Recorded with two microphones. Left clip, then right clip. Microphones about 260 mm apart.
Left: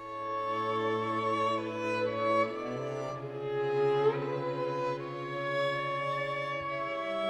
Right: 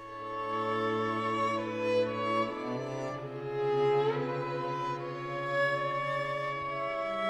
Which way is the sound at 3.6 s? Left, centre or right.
Right.